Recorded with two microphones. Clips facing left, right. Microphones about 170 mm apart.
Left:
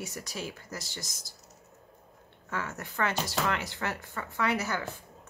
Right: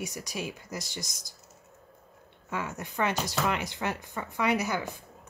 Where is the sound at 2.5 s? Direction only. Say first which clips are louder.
Right 2 dB; 15° right (ahead or behind).